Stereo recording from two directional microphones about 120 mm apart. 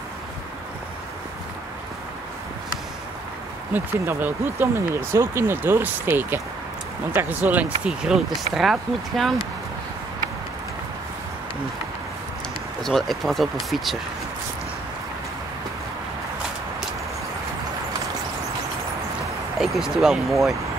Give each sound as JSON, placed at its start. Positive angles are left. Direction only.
{"t": 3.7, "sound": "speech", "side_deg": -15}
{"t": 12.8, "sound": "speech", "side_deg": 0}
{"t": 19.6, "sound": "speech", "side_deg": -5}